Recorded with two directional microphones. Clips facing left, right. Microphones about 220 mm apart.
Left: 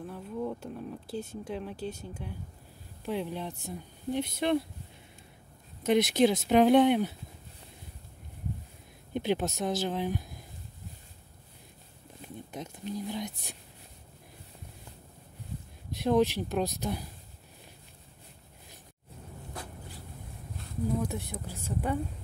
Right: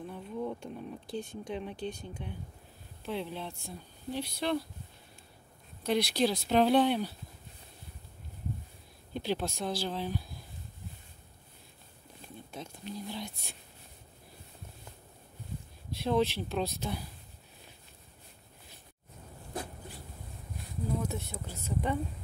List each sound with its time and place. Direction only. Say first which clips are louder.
0.1 s speech: left 2 dB; centre (ahead or behind); by 4.6 s 20° left (ahead or behind)
5.9 s speech: left 5 dB; 20° left (ahead or behind)
9.1 s speech: left 4 dB; 20° left (ahead or behind)
12.5 s speech: left 4 dB; 15° left (ahead or behind)
16.0 s speech: left 4 dB; 15° left (ahead or behind)
21.0 s speech: left 2 dB; 10° left (ahead or behind)